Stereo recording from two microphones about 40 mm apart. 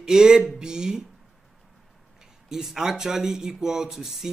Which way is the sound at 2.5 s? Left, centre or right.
Centre.